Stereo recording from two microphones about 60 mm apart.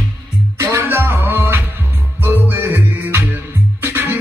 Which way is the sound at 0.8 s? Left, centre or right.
Right.